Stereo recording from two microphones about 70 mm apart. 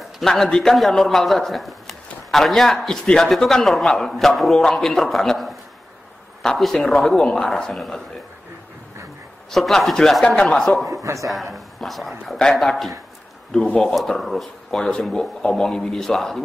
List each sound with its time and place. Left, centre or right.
0.2 s a man's voice: centre
9.5 s a man's voice: centre
10.2 s speech: centre
10.9 s a man's voice: right
11.5 s a man's voice: centre
13.7 s speech: centre